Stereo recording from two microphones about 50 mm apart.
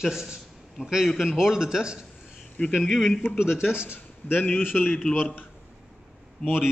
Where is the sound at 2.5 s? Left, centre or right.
Centre.